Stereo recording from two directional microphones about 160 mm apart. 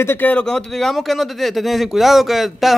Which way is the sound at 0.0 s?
15° left (ahead or behind).